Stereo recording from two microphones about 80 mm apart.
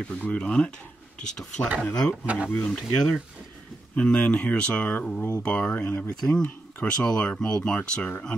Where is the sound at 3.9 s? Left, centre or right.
Centre.